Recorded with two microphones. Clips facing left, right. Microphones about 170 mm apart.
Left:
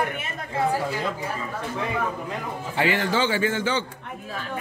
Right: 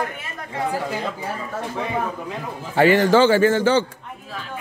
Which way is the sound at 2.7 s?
45° right (ahead or behind).